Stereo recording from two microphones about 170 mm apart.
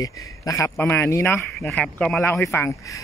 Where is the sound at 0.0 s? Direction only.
20° left (ahead or behind).